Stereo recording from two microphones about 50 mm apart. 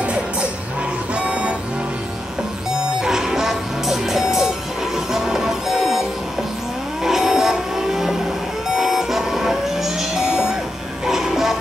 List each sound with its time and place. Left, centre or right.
0.0 s music: right
3.0 s music: centre
7.1 s a sound: centre
8.7 s vehicle: centre
10.1 s music: centre